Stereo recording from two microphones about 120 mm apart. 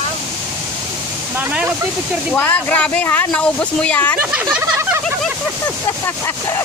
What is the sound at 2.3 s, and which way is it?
Speech, 15° left (ahead or behind).